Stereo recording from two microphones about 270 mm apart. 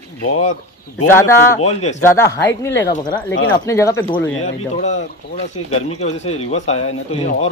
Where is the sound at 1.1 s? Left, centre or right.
Centre.